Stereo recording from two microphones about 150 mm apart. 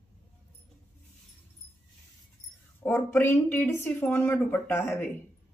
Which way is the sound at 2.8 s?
15° left (ahead or behind).